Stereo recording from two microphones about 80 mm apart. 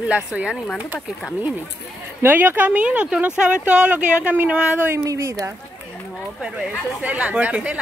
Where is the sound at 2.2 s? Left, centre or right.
Right.